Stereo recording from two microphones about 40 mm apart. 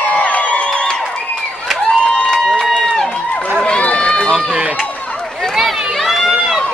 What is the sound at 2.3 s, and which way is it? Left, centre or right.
Run, centre.